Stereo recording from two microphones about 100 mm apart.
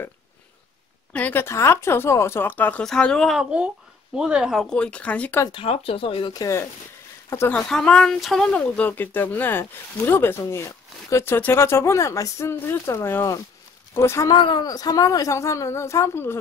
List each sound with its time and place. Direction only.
1.1 s a woman's voice: 15° left (ahead or behind)
1.4 s speech: 25° left (ahead or behind)
2.8 s a woman's voice: 5° left (ahead or behind)
4.6 s speech: 10° left (ahead or behind)
5.5 s speech: 70° left (ahead or behind)
6.3 s a woman's voice: 35° left (ahead or behind)
7.5 s speech: 10° left (ahead or behind); by 14.3 s 30° left (ahead or behind)
14.3 s speech: 50° left (ahead or behind)
14.7 s a woman's voice: 40° left (ahead or behind)